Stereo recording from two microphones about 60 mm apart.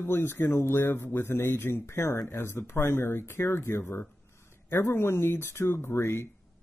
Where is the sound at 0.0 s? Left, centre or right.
Left.